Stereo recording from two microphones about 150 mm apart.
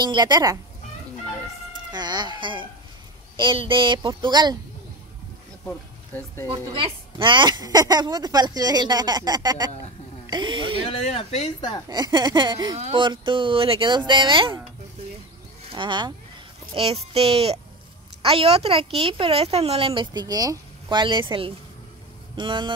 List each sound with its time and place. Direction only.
0.0 s speech: 30° right (ahead or behind)
1.9 s speech: 30° right (ahead or behind)
5.7 s speech: 15° left (ahead or behind)
6.5 s speech: 35° right (ahead or behind)
10.9 s speech: 45° left (ahead or behind)
11.9 s speech: 30° right (ahead or behind)
12.7 s speech: 40° right (ahead or behind)
15.7 s speech: 30° right (ahead or behind)